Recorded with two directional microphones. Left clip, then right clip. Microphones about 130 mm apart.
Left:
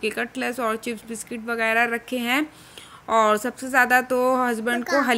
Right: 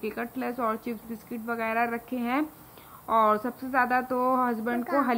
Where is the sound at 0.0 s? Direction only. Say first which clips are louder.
Left 7 dB; 25° left (ahead or behind).